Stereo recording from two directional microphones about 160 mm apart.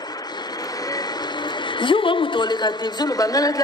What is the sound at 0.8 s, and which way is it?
Speech, 25° left (ahead or behind).